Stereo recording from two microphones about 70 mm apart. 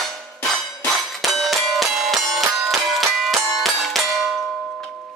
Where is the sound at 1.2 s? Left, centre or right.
Centre.